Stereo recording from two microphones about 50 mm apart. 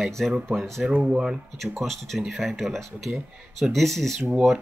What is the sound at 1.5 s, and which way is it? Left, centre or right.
Speech, centre.